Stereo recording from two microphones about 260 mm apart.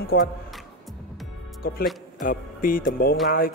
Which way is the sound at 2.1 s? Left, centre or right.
Left.